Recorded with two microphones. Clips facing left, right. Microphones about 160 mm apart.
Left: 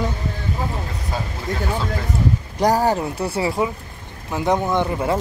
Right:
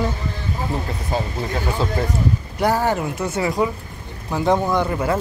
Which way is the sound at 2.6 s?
40° left (ahead or behind).